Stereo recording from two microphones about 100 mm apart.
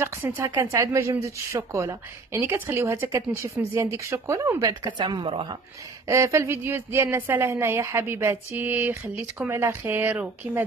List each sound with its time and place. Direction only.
0.0 s speech: 25° right (ahead or behind); by 5.2 s 45° right (ahead or behind)
5.2 s speech: 65° right (ahead or behind)
6.0 s speech: 30° right (ahead or behind); by 10.6 s 15° right (ahead or behind)